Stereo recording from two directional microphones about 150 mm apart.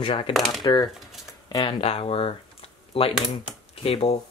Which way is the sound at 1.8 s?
40° left (ahead or behind).